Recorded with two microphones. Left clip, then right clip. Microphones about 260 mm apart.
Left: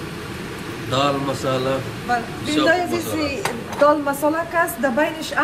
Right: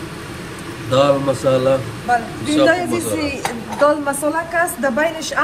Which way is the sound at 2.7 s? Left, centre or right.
Right.